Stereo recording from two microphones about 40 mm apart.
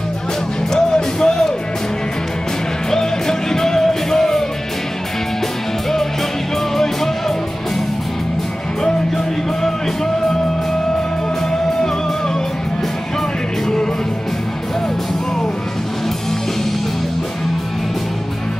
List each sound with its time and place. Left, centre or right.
0.7 s music: centre
2.9 s music: centre